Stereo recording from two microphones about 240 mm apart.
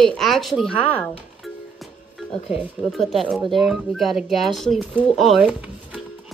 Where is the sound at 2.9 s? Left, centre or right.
Centre.